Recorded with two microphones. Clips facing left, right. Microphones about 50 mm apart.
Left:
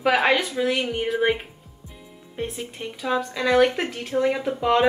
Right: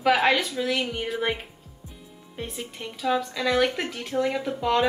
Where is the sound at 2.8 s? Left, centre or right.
Centre.